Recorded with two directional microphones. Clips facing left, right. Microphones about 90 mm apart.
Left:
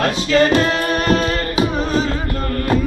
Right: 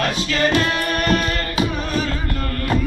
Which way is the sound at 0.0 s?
30° left (ahead or behind).